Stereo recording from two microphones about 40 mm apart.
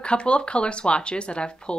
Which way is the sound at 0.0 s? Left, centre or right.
Left.